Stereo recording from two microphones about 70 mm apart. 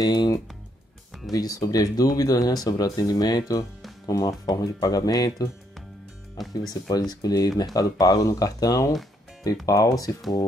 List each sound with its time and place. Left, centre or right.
0.0 s speech: left
1.3 s speech: left
6.7 s speech: left